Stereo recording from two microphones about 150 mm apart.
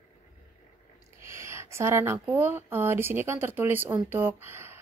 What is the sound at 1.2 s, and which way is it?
Speech, 20° right (ahead or behind).